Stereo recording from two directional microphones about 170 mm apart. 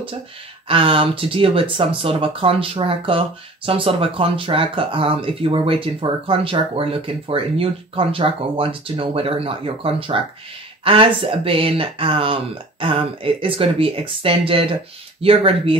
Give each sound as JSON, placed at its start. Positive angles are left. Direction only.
{"t": 0.7, "sound": "speech", "side_deg": -30}